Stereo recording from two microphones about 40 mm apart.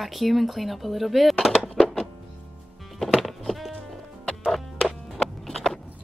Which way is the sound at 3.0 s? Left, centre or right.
Centre.